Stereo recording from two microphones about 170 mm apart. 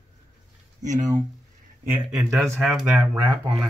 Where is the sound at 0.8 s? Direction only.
45° right (ahead or behind).